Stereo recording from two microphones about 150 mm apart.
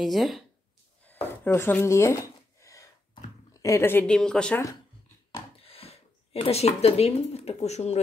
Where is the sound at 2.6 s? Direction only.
20° left (ahead or behind).